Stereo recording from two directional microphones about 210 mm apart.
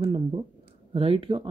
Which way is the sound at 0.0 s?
25° right (ahead or behind).